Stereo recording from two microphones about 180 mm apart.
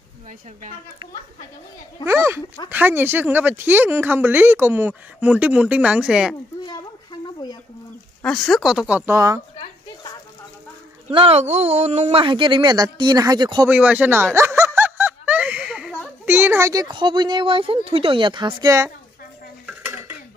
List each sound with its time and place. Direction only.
2.0 s speech: 15° right (ahead or behind)
6.6 s a sound: 25° left (ahead or behind)
8.2 s speech: 5° left (ahead or behind); by 9.4 s 15° right (ahead or behind)
11.1 s speech: 35° right (ahead or behind)
13.7 s snicker: 10° right (ahead or behind)
16.3 s speech: 10° right (ahead or behind)
19.6 s dishes: 10° right (ahead or behind)